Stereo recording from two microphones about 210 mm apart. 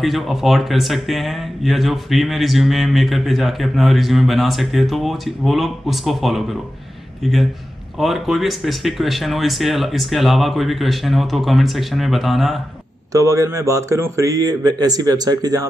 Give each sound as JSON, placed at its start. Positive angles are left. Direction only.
{"t": 0.0, "sound": "speech", "side_deg": 0}
{"t": 8.0, "sound": "speech", "side_deg": 0}
{"t": 13.1, "sound": "a man's voice", "side_deg": -15}